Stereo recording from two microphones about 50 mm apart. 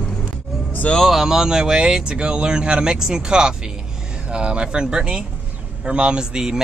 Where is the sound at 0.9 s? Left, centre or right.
Centre.